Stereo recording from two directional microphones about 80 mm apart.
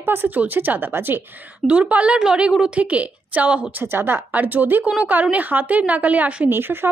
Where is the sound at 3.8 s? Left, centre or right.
Right.